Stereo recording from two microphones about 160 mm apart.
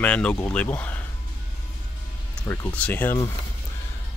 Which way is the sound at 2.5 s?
10° left (ahead or behind).